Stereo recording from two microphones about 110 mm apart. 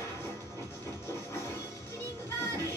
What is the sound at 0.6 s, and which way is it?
Music, 25° left (ahead or behind).